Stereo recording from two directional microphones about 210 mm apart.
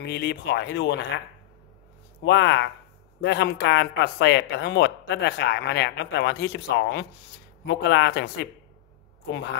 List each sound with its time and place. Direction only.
0.0 s speech: 50° left (ahead or behind)
2.2 s speech: 60° left (ahead or behind)